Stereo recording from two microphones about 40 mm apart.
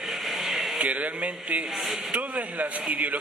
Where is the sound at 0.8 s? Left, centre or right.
Right.